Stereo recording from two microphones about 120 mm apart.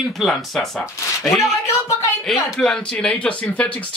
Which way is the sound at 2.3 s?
5° left (ahead or behind).